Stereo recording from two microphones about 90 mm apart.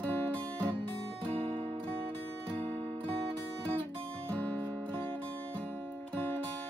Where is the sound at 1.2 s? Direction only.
65° right (ahead or behind).